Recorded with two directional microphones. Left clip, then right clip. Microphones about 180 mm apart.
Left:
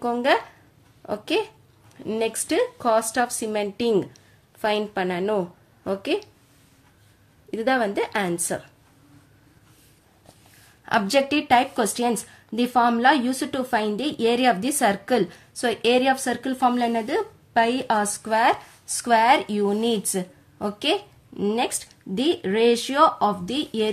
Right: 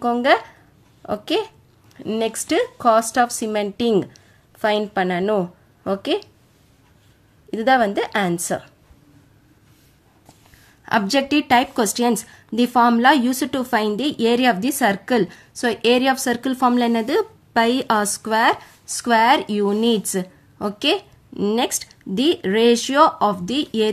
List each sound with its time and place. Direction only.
0.0 s a woman's voice: 20° right (ahead or behind)
7.5 s a woman's voice: 25° right (ahead or behind)
10.9 s a woman's voice: 15° right (ahead or behind)